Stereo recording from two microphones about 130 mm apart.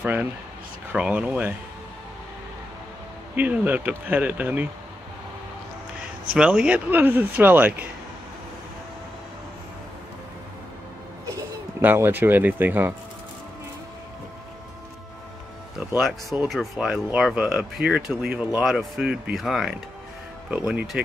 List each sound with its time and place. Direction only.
0.0 s speech: 15° right (ahead or behind)
3.3 s speech: 15° right (ahead or behind)
6.3 s speech: 5° right (ahead or behind)
11.8 s speech: 15° right (ahead or behind)
16.0 s speech: centre (ahead or behind)